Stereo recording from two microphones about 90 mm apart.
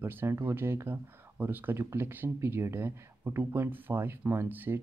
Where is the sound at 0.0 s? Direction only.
25° right (ahead or behind).